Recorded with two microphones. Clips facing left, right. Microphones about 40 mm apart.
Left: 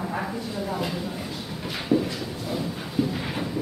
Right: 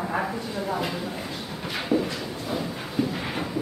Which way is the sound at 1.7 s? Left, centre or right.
Centre.